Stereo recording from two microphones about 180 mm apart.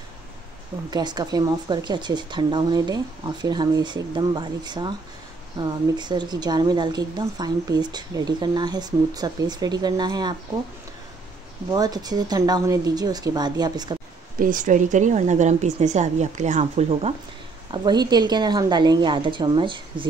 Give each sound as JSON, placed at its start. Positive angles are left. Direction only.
{"t": 0.8, "sound": "speech", "side_deg": -20}
{"t": 11.7, "sound": "speech", "side_deg": -20}
{"t": 14.4, "sound": "a woman's voice", "side_deg": -45}
{"t": 17.6, "sound": "speech", "side_deg": -25}